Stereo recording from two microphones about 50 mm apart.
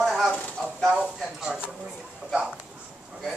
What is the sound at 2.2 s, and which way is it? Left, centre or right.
Speech, right.